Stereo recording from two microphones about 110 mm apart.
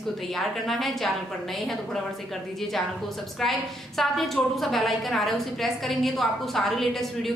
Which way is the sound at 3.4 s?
Centre (ahead or behind).